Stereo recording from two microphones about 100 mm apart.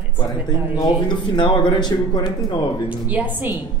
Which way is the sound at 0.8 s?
50° left (ahead or behind).